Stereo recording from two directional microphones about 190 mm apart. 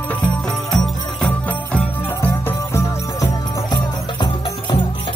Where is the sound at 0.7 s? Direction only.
5° left (ahead or behind).